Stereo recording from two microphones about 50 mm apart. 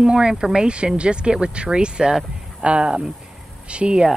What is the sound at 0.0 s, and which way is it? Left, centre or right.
Speech, centre.